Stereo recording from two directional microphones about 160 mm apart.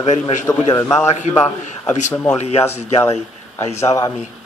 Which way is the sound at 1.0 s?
45° left (ahead or behind).